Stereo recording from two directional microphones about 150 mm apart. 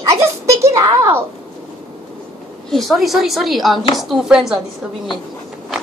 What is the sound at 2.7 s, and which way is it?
A man's voice, centre (ahead or behind).